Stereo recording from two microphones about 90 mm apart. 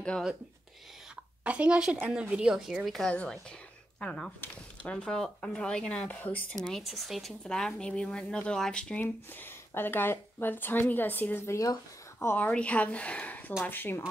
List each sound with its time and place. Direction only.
1.4 s speech: 15° right (ahead or behind); by 6.4 s 15° left (ahead or behind)
6.7 s speech: centre (ahead or behind)
9.0 s speech: 20° left (ahead or behind)
11.5 s speech: 40° left (ahead or behind)
12.3 s speech: 15° left (ahead or behind)